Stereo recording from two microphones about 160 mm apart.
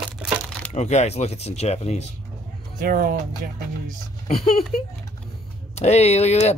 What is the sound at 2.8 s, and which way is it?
Speech, 60° right (ahead or behind).